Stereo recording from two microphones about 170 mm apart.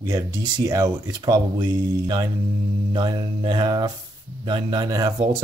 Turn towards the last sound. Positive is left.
turn(degrees=-25)  # may be behind; listen again after turning